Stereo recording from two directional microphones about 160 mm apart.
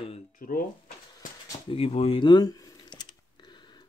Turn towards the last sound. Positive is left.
turn(degrees=25)  # may be behind; listen again after turning